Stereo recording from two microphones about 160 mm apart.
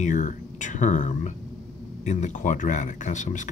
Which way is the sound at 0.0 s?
50° left (ahead or behind).